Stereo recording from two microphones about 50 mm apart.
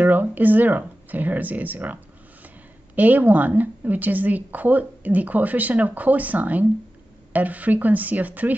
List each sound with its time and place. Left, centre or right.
0.0 s speech: right
3.0 s a woman's voice: right